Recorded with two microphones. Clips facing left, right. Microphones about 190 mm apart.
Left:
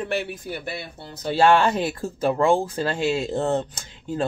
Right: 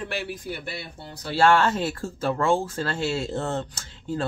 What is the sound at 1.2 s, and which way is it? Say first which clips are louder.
Speech: left 2 dB; 20° left (ahead or behind).